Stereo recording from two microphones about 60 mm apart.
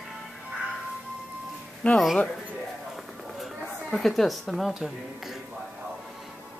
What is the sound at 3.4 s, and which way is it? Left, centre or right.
A woman's voice, centre.